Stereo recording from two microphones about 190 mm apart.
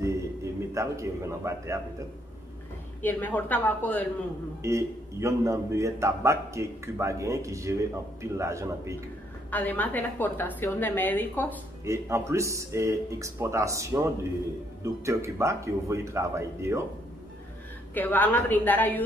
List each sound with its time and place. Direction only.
0.7 s a man's voice: 15° right (ahead or behind)
3.0 s a woman's voice: 10° left (ahead or behind)
4.6 s a man's voice: 15° right (ahead or behind)
9.5 s a woman's voice: 10° left (ahead or behind)
11.8 s a man's voice: 15° right (ahead or behind)
17.9 s a woman's voice: 10° left (ahead or behind)